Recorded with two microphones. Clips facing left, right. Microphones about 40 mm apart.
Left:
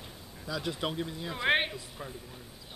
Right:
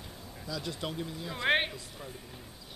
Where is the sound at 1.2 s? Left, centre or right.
Centre.